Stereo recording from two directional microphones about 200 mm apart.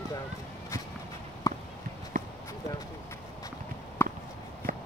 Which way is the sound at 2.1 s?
40° right (ahead or behind).